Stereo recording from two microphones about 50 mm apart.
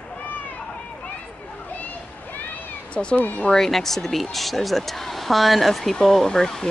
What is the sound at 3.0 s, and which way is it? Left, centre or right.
Speech, centre.